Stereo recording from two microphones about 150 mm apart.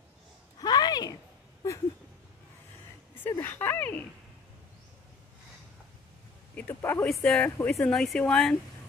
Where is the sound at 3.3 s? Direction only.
15° left (ahead or behind).